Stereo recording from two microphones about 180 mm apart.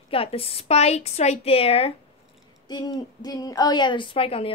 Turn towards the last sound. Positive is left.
turn(degrees=30)  # may be behind; listen again after turning